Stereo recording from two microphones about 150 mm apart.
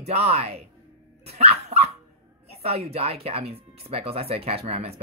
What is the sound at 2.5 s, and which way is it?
Speech, 45° right (ahead or behind).